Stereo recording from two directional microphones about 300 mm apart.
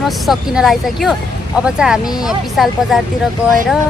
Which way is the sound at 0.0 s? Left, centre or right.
Centre.